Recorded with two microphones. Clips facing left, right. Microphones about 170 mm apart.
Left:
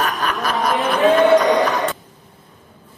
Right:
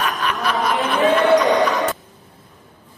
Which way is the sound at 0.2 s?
40° left (ahead or behind).